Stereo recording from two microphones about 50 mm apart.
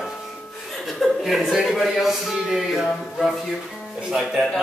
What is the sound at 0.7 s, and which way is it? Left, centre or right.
A man's voice, centre.